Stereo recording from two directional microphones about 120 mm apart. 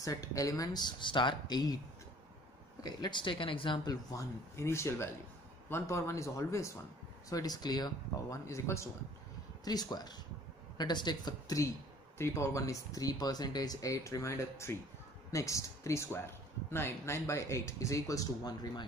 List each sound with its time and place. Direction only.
0.0 s speech: 25° left (ahead or behind)
2.8 s speech: 40° left (ahead or behind)
3.8 s speech: 30° left (ahead or behind)
9.7 s speech: 35° left (ahead or behind)